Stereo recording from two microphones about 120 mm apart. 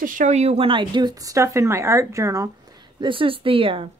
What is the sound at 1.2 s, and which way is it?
Speech, 25° right (ahead or behind).